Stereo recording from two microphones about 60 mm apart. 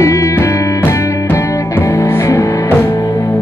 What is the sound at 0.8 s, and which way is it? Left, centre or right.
Music, left.